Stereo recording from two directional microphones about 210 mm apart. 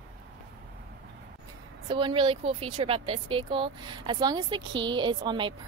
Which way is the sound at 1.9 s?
25° right (ahead or behind).